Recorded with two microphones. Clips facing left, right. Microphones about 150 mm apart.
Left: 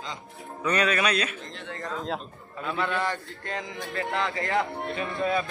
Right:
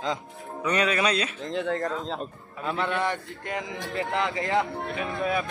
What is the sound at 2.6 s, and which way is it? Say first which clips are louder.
A man's voice: right 1 dB; 20° right (ahead or behind).